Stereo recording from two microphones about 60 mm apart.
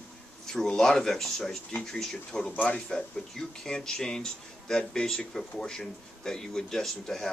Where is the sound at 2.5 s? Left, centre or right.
Left.